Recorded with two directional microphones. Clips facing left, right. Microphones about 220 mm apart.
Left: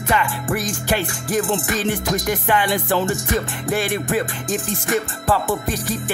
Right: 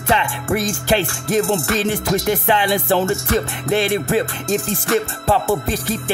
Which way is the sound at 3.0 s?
15° left (ahead or behind).